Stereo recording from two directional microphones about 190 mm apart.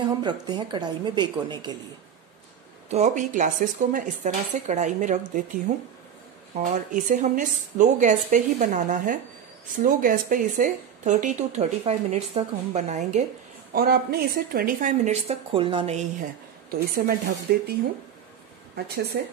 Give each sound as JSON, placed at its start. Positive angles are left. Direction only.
{"t": 0.2, "sound": "a woman's voice", "side_deg": -25}
{"t": 2.9, "sound": "speech", "side_deg": -40}
{"t": 6.6, "sound": "a woman's voice", "side_deg": -45}
{"t": 13.7, "sound": "speech", "side_deg": -55}
{"t": 16.9, "sound": "a woman's voice", "side_deg": -50}
{"t": 19.1, "sound": "speech", "side_deg": -55}